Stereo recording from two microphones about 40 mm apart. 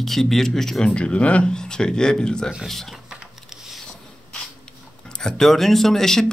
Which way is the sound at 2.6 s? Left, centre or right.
Centre.